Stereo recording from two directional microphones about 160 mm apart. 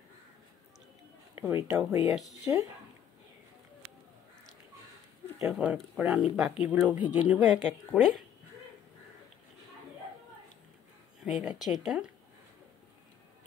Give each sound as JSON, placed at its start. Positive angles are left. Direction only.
{"t": 1.3, "sound": "a sound", "side_deg": -15}
{"t": 1.7, "sound": "speech", "side_deg": -15}
{"t": 5.5, "sound": "speech", "side_deg": -5}
{"t": 11.2, "sound": "speech", "side_deg": 0}